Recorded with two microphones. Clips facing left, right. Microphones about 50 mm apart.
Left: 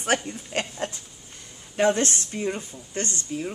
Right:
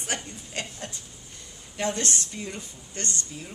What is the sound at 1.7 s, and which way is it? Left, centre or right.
Speech, left.